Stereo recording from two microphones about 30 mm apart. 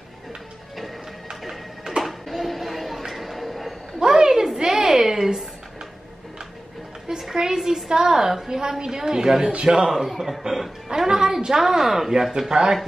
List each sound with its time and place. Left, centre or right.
1.4 s music: centre
2.3 s a sound: centre
4.0 s a sound: right
7.2 s a woman's voice: centre
9.9 s a man's voice: centre
10.9 s a woman's voice: right